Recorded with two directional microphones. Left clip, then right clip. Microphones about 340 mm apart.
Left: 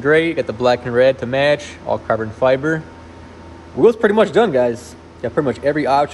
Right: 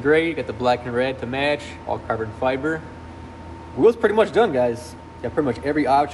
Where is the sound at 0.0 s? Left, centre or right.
Left.